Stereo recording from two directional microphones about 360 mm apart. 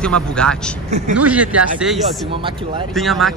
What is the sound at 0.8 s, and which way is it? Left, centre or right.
Speech, centre.